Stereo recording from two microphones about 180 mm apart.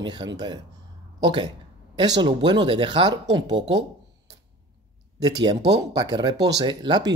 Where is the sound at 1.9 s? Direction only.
20° right (ahead or behind).